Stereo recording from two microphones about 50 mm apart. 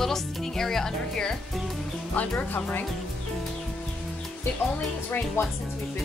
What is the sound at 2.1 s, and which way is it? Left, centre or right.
Speech, left.